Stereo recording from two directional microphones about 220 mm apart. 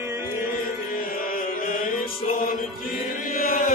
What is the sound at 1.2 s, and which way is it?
Mantra, 40° left (ahead or behind).